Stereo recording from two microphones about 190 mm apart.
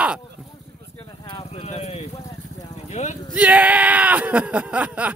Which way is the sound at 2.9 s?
35° left (ahead or behind).